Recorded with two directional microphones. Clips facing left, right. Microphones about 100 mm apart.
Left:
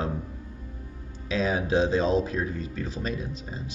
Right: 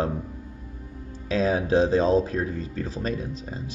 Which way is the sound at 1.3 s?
40° right (ahead or behind).